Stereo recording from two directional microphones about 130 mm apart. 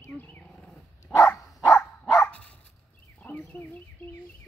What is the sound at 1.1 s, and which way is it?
Dog, 20° left (ahead or behind).